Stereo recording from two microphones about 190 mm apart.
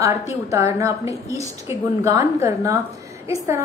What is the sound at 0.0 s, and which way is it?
A woman's voice, 15° right (ahead or behind).